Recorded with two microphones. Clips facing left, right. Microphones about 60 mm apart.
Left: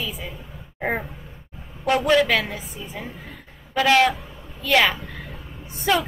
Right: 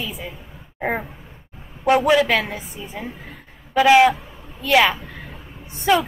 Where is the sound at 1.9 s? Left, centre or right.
Centre.